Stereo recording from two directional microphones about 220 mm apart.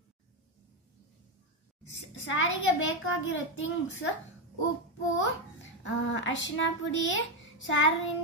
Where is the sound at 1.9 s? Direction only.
60° left (ahead or behind).